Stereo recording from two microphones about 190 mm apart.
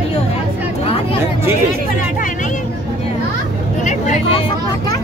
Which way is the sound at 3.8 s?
40° left (ahead or behind).